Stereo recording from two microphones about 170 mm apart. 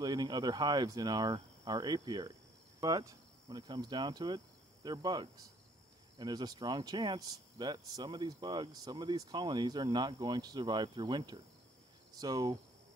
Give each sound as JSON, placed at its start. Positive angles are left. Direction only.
{"t": 0.0, "sound": "speech", "side_deg": -20}